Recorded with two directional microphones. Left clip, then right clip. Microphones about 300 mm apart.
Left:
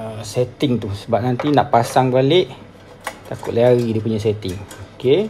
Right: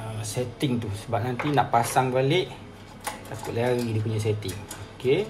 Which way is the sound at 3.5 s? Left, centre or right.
Left.